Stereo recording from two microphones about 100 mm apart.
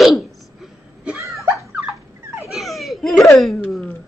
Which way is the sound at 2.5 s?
Centre (ahead or behind).